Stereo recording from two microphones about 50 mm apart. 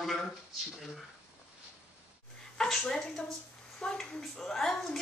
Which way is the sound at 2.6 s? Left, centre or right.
Centre.